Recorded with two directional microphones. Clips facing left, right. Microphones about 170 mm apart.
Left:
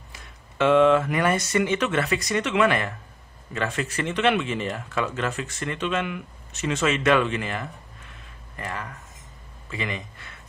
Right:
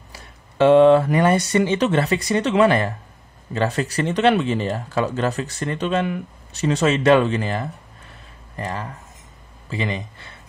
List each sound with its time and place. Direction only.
0.1 s speech: 35° right (ahead or behind)